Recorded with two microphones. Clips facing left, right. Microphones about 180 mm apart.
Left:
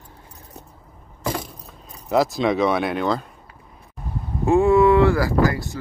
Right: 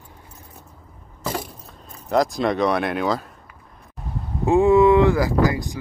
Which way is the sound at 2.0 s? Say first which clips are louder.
Left 1 dB; centre (ahead or behind).